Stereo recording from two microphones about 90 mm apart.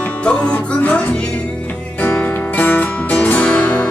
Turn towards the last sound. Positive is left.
turn(degrees=15)  # may be behind; listen again after turning